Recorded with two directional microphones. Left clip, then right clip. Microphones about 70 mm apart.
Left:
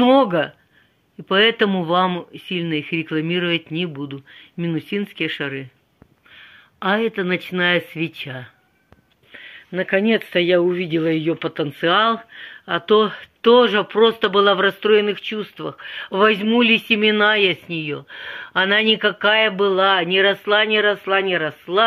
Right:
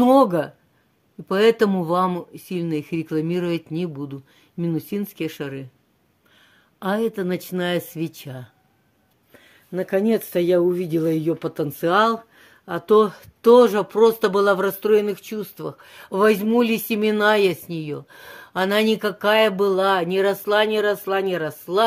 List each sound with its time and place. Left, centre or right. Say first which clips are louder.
0.0 s speech: left 1 dB; right
1.3 s speech: left 1 dB; right
6.8 s speech: left 4 dB; right
9.8 s speech: left 3 dB; right
19.1 s speech: left 1 dB; right